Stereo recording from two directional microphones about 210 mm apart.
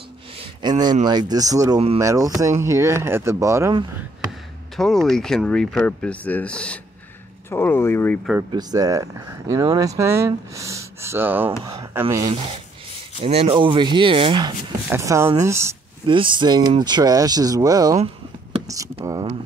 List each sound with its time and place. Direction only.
0.6 s speech: 20° right (ahead or behind)
4.7 s speech: centre (ahead or behind)
8.5 s speech: 20° right (ahead or behind)
12.3 s speech: 25° right (ahead or behind)
14.9 s speech: 15° right (ahead or behind)
16.1 s speech: 25° right (ahead or behind)
17.9 s a sound: 30° right (ahead or behind)